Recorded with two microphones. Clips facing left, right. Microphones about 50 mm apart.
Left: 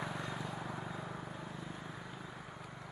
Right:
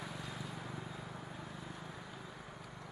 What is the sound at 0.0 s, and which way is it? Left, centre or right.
Vehicle, left.